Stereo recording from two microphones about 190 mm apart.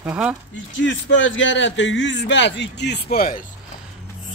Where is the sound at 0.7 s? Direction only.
80° left; by 3.4 s 50° left (ahead or behind).